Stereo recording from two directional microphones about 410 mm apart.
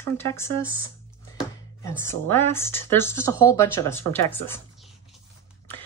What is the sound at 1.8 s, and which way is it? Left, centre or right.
Speech, centre.